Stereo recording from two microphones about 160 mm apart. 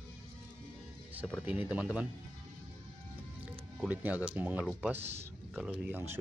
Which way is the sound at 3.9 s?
10° right (ahead or behind).